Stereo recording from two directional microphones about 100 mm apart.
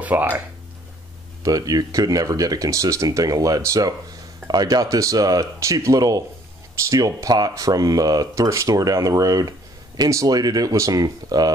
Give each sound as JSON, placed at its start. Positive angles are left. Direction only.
{"t": 0.0, "sound": "speech", "side_deg": -20}
{"t": 1.4, "sound": "speech", "side_deg": -40}